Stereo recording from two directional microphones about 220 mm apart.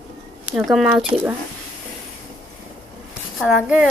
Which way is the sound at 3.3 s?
5° right (ahead or behind).